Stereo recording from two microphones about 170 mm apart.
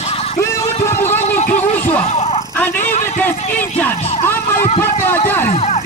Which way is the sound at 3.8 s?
15° left (ahead or behind).